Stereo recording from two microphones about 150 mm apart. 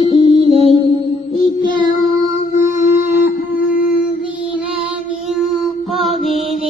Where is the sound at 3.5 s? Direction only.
65° left (ahead or behind).